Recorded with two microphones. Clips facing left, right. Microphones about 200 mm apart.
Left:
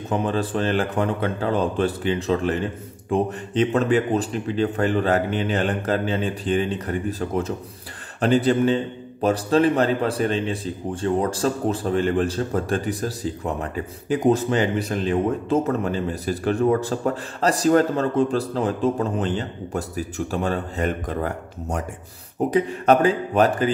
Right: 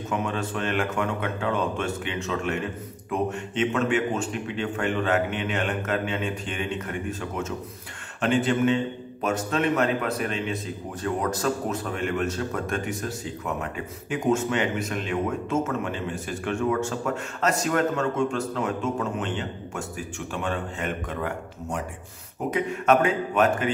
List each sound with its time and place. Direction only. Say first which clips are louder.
0.1 s a man's voice: left 6 dB; 35° left (ahead or behind)